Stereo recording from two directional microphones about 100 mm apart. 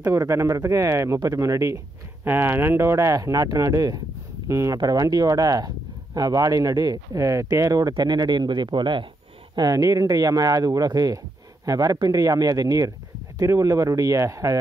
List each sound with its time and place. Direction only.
0.0 s speech: 25° right (ahead or behind)
2.2 s speech: 20° right (ahead or behind); by 9.0 s 50° right (ahead or behind)
9.6 s speech: 35° right (ahead or behind)